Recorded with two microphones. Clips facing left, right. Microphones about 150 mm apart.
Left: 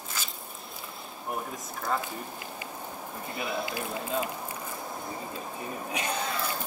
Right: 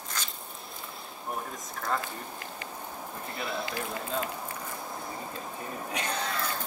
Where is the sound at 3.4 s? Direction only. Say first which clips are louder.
Left 2 dB; 5° left (ahead or behind).